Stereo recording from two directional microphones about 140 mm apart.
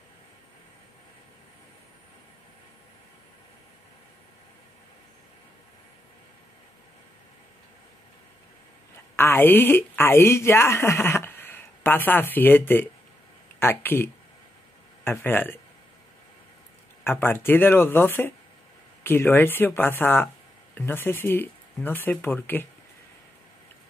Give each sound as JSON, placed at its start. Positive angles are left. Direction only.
{"t": 9.1, "sound": "a woman's voice", "side_deg": 15}
{"t": 17.0, "sound": "speech", "side_deg": 15}